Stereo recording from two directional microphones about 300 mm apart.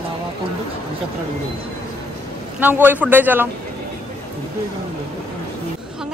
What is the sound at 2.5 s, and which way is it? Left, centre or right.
Speech, centre.